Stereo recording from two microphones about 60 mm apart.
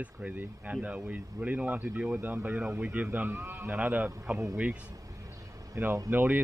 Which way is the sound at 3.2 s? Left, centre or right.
Right.